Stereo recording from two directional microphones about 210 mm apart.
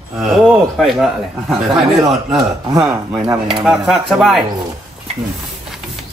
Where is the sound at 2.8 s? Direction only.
10° right (ahead or behind).